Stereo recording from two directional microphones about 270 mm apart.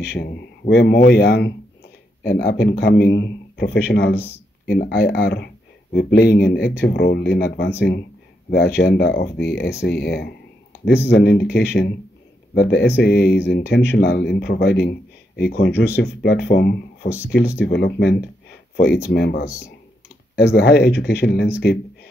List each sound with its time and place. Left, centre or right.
0.1 s speech: left
19.1 s speech: left